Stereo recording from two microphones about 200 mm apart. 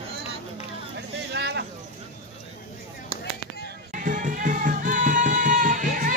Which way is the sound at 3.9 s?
40° right (ahead or behind).